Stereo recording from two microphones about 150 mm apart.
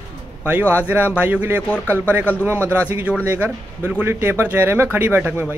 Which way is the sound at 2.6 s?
10° right (ahead or behind).